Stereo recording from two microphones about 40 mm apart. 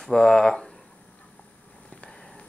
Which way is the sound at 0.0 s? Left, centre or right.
Centre.